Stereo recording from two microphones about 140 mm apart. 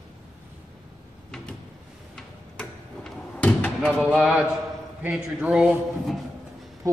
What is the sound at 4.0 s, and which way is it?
A man's voice, 10° right (ahead or behind).